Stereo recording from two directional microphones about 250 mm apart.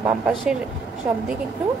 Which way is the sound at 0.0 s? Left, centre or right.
Centre.